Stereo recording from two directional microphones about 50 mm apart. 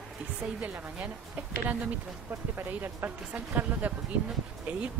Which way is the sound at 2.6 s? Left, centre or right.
Right.